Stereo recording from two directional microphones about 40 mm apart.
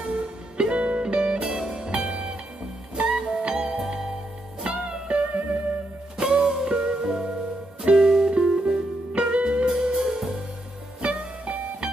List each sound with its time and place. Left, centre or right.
0.2 s music: right
3.0 s music: right
3.3 s music: centre
4.6 s music: right